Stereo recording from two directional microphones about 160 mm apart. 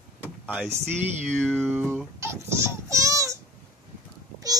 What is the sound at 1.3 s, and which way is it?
Speech, 5° left (ahead or behind).